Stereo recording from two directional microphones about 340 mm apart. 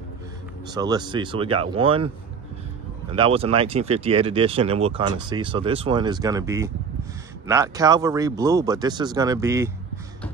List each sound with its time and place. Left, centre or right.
0.7 s speech: centre
3.1 s speech: centre